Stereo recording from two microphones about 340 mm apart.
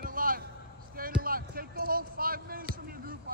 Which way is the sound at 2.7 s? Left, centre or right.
Right.